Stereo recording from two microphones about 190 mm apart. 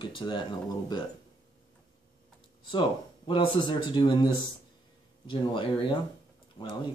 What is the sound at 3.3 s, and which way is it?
Speech, 25° left (ahead or behind).